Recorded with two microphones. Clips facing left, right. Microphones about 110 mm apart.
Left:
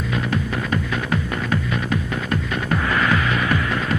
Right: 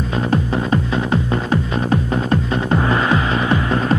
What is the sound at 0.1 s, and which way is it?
Music, 30° right (ahead or behind).